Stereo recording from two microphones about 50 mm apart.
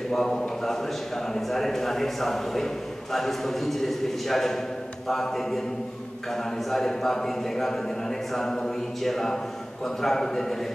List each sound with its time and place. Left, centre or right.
0.1 s a man's voice: centre